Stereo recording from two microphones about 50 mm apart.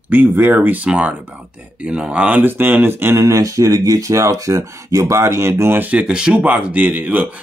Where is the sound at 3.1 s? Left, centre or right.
Right.